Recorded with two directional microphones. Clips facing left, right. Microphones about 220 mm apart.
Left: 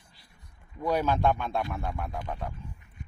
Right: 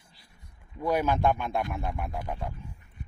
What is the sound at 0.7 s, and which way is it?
Speech, 10° right (ahead or behind).